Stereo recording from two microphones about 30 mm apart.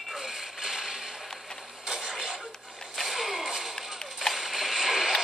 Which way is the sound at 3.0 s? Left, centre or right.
Centre.